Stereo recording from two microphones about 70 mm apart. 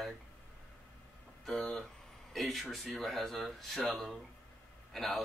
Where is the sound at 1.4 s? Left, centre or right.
Centre.